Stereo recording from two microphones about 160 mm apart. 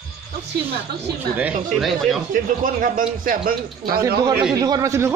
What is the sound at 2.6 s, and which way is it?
A man's voice, 60° right (ahead or behind).